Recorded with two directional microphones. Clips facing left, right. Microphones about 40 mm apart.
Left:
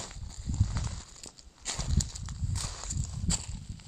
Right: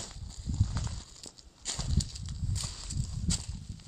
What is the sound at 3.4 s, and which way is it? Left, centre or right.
Walk, left.